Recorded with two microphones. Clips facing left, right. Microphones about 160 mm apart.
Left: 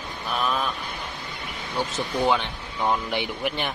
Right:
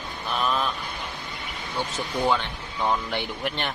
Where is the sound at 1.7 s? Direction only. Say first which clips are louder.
Left 2 dB; 15° left (ahead or behind).